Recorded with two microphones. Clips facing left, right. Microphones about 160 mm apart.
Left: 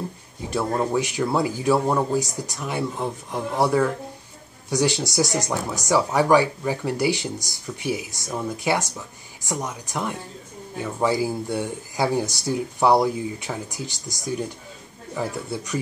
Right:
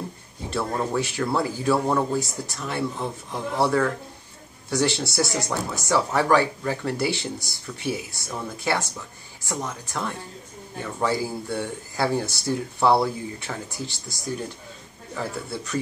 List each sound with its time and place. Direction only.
0.5 s speech: 15° left (ahead or behind)
15.1 s speech: 15° left (ahead or behind)